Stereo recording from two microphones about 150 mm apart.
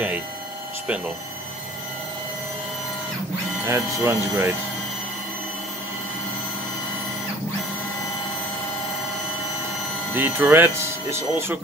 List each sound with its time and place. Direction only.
3.6 s speech: 20° right (ahead or behind)
10.1 s speech: 15° right (ahead or behind)